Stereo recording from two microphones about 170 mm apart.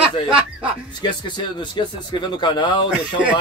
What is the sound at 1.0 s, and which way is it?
Speech, 25° left (ahead or behind).